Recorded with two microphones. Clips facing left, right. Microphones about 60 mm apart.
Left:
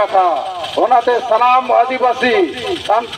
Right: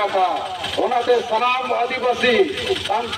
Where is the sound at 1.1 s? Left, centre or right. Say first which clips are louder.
Left 6 dB; left.